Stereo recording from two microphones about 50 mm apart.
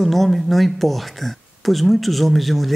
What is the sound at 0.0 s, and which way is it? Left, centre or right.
Speech, centre.